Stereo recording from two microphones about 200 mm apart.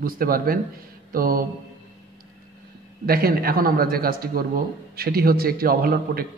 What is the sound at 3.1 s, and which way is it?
A man's voice, 50° right (ahead or behind).